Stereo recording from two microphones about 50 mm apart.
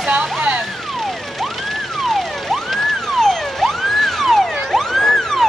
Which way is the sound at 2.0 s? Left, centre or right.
Centre.